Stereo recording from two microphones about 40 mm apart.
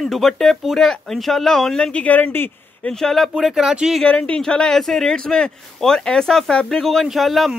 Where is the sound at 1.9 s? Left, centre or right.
Left.